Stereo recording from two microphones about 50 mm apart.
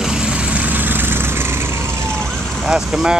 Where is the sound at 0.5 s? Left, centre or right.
Right.